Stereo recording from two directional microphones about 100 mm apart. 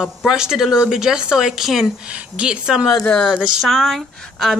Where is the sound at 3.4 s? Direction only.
5° right (ahead or behind).